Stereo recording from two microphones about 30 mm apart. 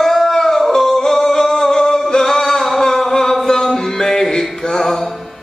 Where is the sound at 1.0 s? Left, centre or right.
Centre.